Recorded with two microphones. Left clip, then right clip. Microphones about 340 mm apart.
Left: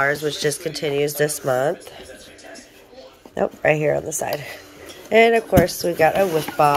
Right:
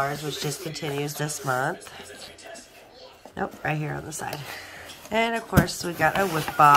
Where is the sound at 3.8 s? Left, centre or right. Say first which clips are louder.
Left 13 dB; right.